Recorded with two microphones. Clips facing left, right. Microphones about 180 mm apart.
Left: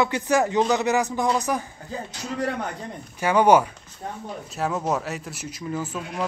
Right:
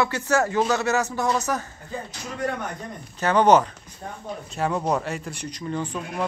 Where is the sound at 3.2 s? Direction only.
10° left (ahead or behind).